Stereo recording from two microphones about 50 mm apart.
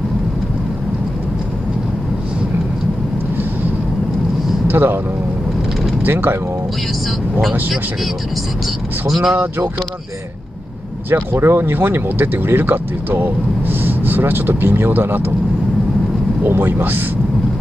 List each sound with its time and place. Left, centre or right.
4.6 s speech: right
6.0 s speech: right
9.0 s speech: centre
9.3 s speech: right
11.1 s speech: right
16.4 s speech: right